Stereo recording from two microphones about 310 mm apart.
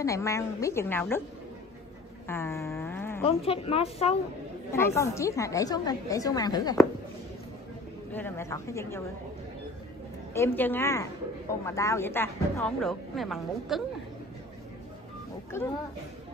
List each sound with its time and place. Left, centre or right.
0.0 s speech: centre
2.2 s a sound: centre
3.3 s speech: centre
4.7 s speech: centre
8.1 s speech: centre
10.3 s speech: centre
15.5 s speech: centre